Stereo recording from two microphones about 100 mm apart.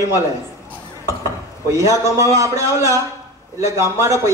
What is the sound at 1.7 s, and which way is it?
A man's voice, 30° right (ahead or behind).